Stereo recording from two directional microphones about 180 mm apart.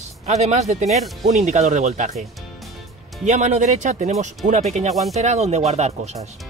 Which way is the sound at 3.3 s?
40° right (ahead or behind).